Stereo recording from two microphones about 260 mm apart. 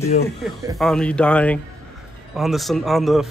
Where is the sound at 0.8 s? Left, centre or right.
Centre.